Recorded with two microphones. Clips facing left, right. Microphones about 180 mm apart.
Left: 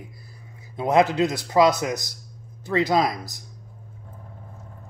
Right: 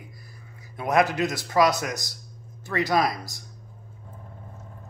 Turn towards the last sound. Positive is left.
turn(degrees=20)  # may be behind; listen again after turning